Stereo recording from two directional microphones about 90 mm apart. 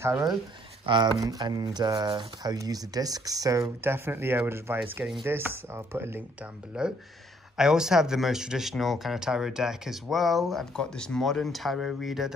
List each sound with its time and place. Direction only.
0.8 s speech: 65° right (ahead or behind)
1.4 s speech: 50° right (ahead or behind)
3.8 s speech: 25° right (ahead or behind)
6.7 s speech: 10° right (ahead or behind)